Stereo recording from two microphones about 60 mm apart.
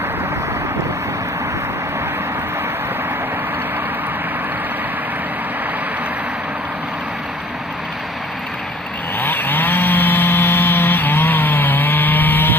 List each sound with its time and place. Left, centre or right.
9.2 s chainsaw: left